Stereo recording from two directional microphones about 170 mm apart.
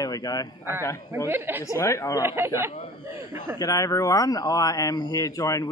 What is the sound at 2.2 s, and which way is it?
Speech, 15° right (ahead or behind).